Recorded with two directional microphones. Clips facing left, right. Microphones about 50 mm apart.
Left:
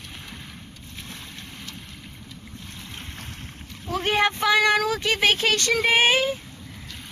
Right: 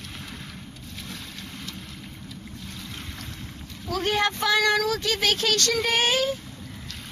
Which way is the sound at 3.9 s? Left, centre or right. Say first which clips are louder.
Left 2 dB; left.